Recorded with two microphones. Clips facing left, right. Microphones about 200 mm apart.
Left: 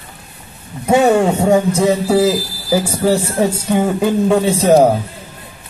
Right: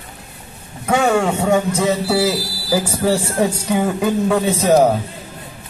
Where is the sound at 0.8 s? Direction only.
20° left (ahead or behind).